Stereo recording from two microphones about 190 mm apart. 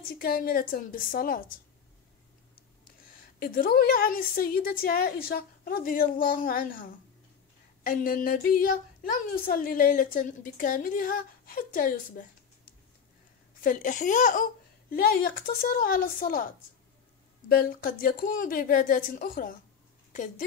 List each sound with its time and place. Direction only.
0.1 s a woman's voice: 50° left (ahead or behind)
3.2 s a woman's voice: 50° left (ahead or behind)
17.5 s a woman's voice: 50° left (ahead or behind)